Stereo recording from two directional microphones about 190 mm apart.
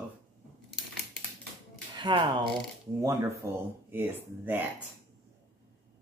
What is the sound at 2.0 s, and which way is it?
Speech, 25° right (ahead or behind).